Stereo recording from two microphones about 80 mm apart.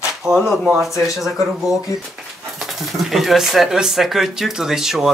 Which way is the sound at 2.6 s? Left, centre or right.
Centre.